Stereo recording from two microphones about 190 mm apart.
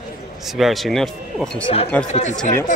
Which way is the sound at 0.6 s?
Centre (ahead or behind).